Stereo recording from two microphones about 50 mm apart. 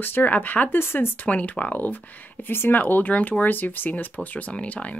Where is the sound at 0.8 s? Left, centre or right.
Left.